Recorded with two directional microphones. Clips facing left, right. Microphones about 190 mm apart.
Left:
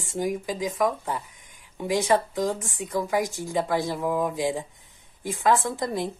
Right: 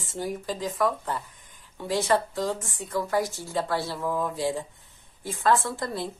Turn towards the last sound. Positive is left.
turn(degrees=15)  # may be behind; listen again after turning